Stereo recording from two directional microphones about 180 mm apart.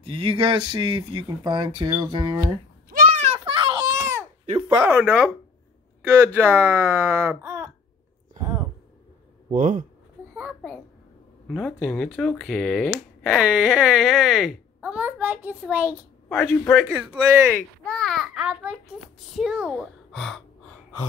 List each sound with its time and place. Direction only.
0.0 s speech: 30° right (ahead or behind)
2.9 s a sound: 50° right (ahead or behind)
3.3 s a sound: 25° right (ahead or behind)
4.7 s speech: 10° right (ahead or behind)
9.5 s speech: 45° right (ahead or behind)
11.4 s a child's voice: 5° left (ahead or behind)
16.3 s a child's voice: 5° left (ahead or behind)
16.9 s speech: 10° right (ahead or behind)
17.8 s a child's voice: 5° left (ahead or behind)